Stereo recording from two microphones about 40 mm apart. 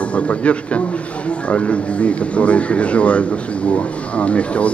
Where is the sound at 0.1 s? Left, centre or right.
Left.